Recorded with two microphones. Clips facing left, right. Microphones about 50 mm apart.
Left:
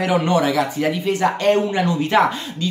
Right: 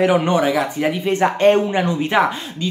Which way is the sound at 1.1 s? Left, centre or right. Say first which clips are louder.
Right 4 dB; right.